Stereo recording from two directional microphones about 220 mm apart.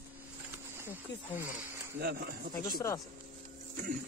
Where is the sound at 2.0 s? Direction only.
45° right (ahead or behind).